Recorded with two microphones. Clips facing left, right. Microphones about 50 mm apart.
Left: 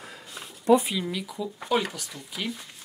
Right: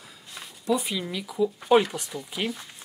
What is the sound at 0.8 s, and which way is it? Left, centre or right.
Speech, centre.